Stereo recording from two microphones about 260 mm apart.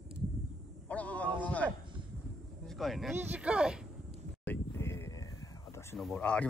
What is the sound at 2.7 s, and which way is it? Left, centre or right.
Speech, centre.